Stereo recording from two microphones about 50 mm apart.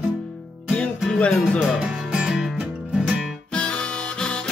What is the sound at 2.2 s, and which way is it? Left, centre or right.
Music, centre.